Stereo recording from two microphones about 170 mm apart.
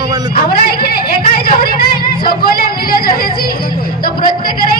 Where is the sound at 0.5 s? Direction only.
65° left (ahead or behind).